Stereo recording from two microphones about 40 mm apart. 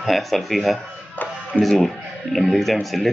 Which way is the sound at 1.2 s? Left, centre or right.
Left.